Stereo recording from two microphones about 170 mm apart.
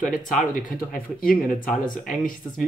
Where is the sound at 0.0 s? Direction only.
50° left (ahead or behind).